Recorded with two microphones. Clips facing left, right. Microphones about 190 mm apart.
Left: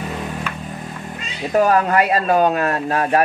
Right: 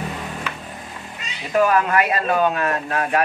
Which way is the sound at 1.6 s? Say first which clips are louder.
Left 2 dB; 35° left (ahead or behind).